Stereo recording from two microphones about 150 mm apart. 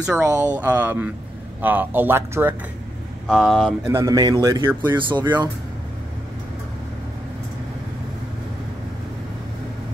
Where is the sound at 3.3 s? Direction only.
Centre (ahead or behind).